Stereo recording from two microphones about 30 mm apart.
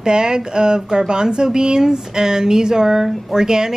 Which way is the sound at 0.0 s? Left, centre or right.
Right.